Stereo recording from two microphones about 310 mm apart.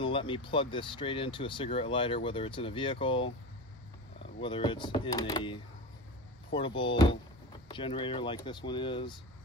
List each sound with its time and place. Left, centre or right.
0.0 s speech: centre
4.4 s speech: centre
6.6 s speech: centre